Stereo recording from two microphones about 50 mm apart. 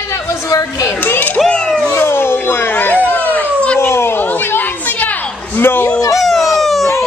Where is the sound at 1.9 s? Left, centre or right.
Left.